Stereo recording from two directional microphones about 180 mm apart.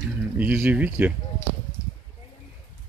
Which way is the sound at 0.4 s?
10° right (ahead or behind).